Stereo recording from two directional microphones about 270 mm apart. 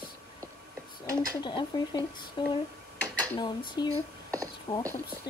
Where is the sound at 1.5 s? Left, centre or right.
Centre.